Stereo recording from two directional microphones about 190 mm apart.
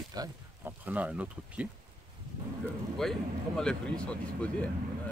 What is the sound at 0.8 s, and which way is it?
Speech, 5° right (ahead or behind).